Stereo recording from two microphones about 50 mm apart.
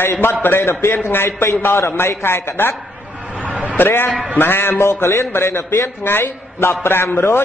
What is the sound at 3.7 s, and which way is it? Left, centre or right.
A man's voice, left.